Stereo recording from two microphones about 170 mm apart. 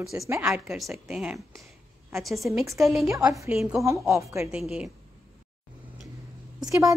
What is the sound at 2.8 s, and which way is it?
Speech, centre (ahead or behind).